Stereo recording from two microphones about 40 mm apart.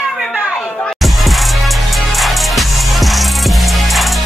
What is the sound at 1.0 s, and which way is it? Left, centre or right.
Music, centre.